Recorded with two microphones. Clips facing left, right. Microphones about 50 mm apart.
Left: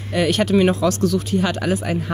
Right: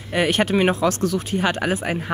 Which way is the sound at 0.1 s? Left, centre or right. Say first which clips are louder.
Left 2 dB; right.